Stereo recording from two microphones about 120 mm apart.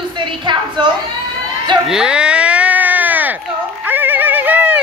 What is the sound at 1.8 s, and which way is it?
Baby cry, 5° right (ahead or behind).